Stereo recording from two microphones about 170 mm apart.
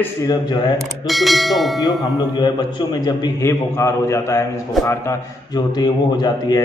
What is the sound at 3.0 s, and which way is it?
A man's voice, 20° left (ahead or behind).